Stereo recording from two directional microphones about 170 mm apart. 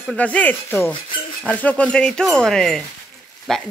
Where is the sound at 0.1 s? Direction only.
10° left (ahead or behind).